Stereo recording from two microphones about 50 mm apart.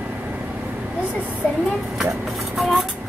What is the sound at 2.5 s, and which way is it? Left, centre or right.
Speech, centre.